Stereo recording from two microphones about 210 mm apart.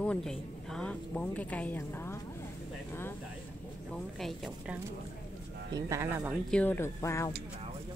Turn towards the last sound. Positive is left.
turn(degrees=15)  # may be behind; listen again after turning